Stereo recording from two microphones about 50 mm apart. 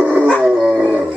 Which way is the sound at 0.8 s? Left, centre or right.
Centre.